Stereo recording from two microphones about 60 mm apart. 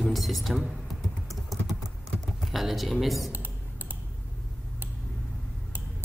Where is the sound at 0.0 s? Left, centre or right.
Centre.